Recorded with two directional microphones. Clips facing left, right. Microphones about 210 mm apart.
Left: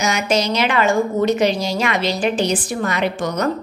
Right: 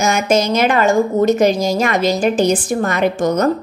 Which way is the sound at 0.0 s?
50° right (ahead or behind).